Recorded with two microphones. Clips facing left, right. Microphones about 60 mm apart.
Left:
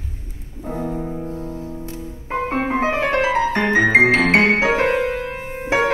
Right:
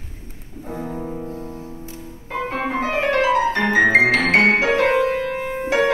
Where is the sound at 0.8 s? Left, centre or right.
Centre.